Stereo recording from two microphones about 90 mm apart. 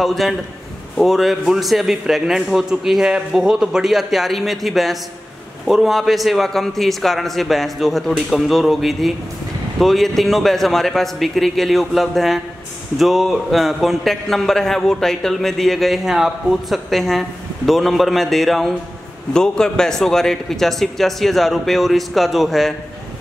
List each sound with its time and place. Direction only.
0.0 s a man's voice: centre (ahead or behind)